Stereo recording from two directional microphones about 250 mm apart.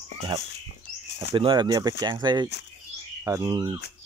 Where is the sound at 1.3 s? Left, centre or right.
Centre.